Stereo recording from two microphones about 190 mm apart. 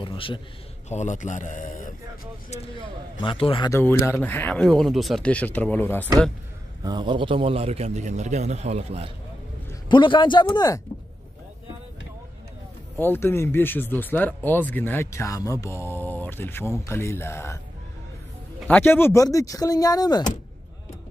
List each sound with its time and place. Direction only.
0.0 s a man's voice: 25° left (ahead or behind)
0.8 s speech: 40° left (ahead or behind)
3.2 s a man's voice: 30° left (ahead or behind)
4.2 s speech: 10° left (ahead or behind)
6.8 s a man's voice: 25° right (ahead or behind)
9.8 s a man's voice: 25° left (ahead or behind)
13.0 s speech: 10° left (ahead or behind)
18.6 s speech: 10° left (ahead or behind)